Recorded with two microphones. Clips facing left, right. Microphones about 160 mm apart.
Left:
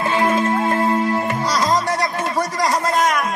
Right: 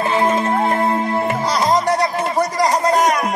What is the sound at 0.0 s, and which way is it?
Music, 25° right (ahead or behind).